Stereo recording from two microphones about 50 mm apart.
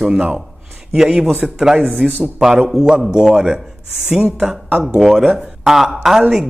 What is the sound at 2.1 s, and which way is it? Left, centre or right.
Speech, right.